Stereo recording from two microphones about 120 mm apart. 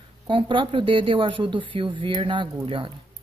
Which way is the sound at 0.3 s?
45° right (ahead or behind).